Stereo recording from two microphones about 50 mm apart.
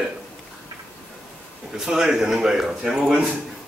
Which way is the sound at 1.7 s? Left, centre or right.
Centre.